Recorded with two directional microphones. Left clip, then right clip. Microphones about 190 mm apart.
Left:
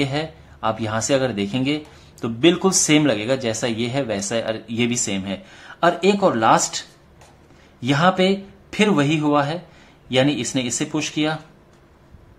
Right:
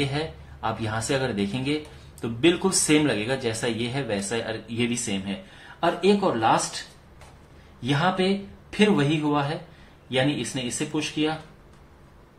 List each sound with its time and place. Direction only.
0.0 s speech: 35° left (ahead or behind)
7.8 s speech: 45° left (ahead or behind)